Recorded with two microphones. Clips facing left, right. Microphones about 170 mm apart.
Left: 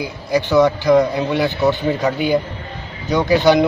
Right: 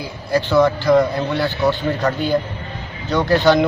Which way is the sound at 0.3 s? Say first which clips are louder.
Left 1 dB; 15° left (ahead or behind).